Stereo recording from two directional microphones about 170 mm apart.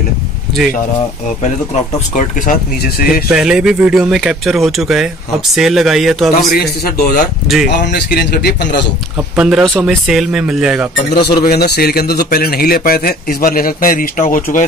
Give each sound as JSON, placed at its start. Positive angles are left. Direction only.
{"t": 2.1, "sound": "a man's voice", "side_deg": 55}
{"t": 3.3, "sound": "speech", "side_deg": -5}
{"t": 8.1, "sound": "a man's voice", "side_deg": 65}
{"t": 9.4, "sound": "speech", "side_deg": 0}
{"t": 11.1, "sound": "a man's voice", "side_deg": 65}